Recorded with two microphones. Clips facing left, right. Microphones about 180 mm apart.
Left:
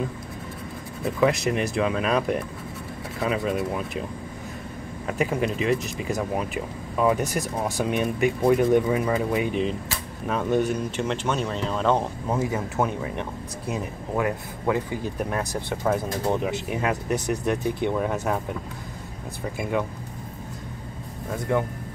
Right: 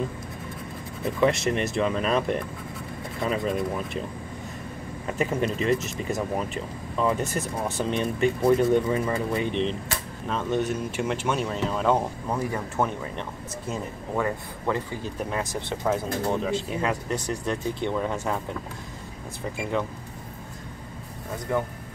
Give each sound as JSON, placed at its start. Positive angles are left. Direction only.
{"t": 1.0, "sound": "speech", "side_deg": 0}
{"t": 5.0, "sound": "speech", "side_deg": 0}
{"t": 11.0, "sound": "speech", "side_deg": -10}
{"t": 12.4, "sound": "speech", "side_deg": 20}